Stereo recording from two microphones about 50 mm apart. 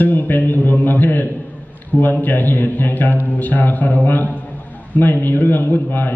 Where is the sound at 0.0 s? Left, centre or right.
Left.